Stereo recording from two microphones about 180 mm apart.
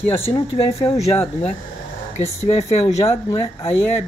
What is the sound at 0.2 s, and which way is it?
Speech, 35° left (ahead or behind).